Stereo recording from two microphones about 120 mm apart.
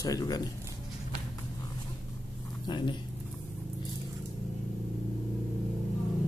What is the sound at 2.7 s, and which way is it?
Speech, 40° left (ahead or behind).